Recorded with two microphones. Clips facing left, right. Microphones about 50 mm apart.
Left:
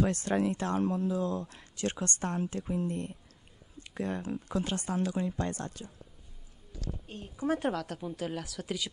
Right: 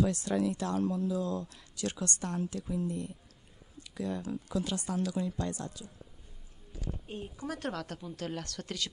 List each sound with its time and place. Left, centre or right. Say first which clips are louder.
0.0 s speech: left 1 dB; left
5.5 s speech: left 1 dB; left
7.1 s speech: right 4 dB; centre
7.4 s a woman's voice: left 8 dB; left
7.7 s speech: left 3 dB; centre
8.0 s speech: left 3 dB; centre